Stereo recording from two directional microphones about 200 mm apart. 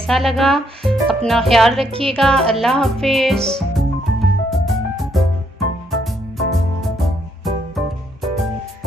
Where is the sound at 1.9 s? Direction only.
30° right (ahead or behind).